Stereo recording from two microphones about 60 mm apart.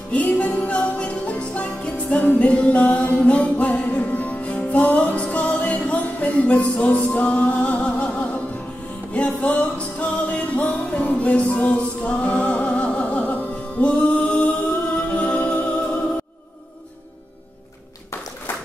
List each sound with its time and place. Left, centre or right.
0.1 s music: left